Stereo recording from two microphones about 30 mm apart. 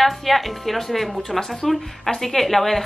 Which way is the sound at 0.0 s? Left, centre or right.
Centre.